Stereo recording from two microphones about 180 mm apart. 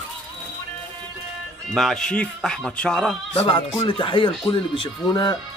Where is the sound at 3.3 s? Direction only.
25° left (ahead or behind).